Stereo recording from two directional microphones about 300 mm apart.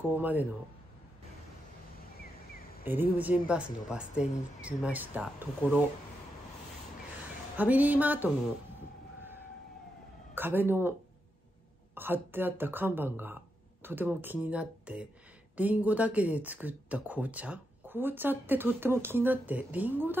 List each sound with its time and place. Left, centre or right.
0.0 s speech: centre
2.8 s speech: centre
7.5 s speech: centre
10.3 s speech: centre